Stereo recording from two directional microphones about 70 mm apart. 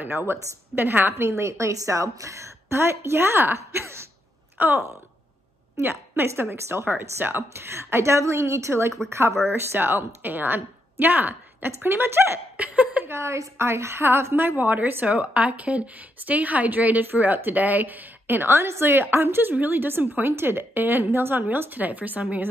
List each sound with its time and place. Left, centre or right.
0.3 s a woman's voice: right
1.4 s a woman's voice: right
12.5 s a sound: right
13.1 s a woman's voice: right